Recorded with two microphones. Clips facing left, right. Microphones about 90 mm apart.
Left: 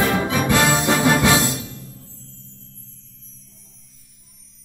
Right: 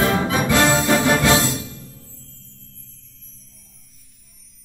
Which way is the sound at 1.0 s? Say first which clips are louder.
Even; 20° left (ahead or behind).